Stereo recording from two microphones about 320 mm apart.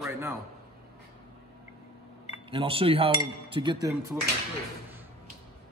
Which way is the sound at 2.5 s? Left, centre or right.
Centre.